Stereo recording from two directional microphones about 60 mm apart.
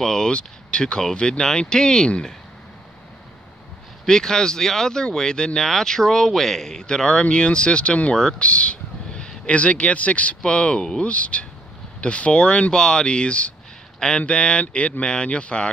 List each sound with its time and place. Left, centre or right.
0.0 s speech: centre
4.0 s speech: centre
8.2 s speech: centre
8.5 s speech: centre